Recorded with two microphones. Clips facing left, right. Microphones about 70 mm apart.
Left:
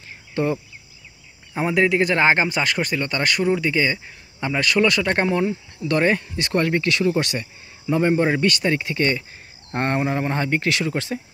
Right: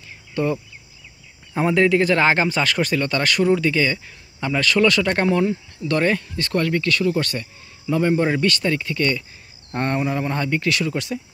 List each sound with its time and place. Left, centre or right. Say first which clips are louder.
0.3 s a sound: even; left
1.5 s speech: right 2 dB; centre
8.6 s speech: even; left